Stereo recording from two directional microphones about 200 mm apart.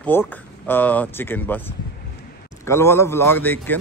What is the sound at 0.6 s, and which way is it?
Speech, 10° left (ahead or behind).